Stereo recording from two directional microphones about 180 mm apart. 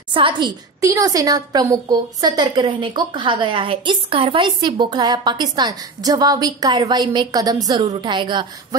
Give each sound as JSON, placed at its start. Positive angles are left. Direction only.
{"t": 0.1, "sound": "a woman's voice", "side_deg": -25}